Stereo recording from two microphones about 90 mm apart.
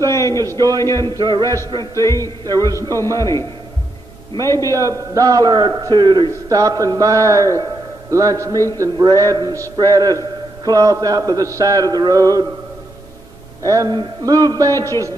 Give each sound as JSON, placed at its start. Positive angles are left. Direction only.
{"t": 0.1, "sound": "a man's voice", "side_deg": 35}
{"t": 0.6, "sound": "a man's voice", "side_deg": -45}
{"t": 2.0, "sound": "a man's voice", "side_deg": 35}
{"t": 2.4, "sound": "a man's voice", "side_deg": -45}
{"t": 3.2, "sound": "a man's voice", "side_deg": 35}
{"t": 4.7, "sound": "a man's voice", "side_deg": -40}
{"t": 6.6, "sound": "a man's voice", "side_deg": -40}
{"t": 13.6, "sound": "a man's voice", "side_deg": -40}